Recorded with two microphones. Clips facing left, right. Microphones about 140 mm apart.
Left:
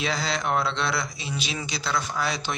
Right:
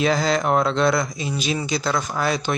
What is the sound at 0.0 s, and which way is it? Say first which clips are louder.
Speech: right 8 dB; 45° right (ahead or behind).